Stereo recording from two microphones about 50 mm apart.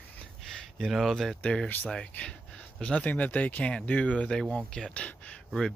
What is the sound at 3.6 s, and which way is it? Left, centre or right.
Speech, left.